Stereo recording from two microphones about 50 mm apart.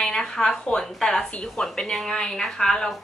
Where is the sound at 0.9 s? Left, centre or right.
Centre.